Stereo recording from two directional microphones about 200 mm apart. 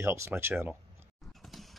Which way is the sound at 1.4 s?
Centre (ahead or behind).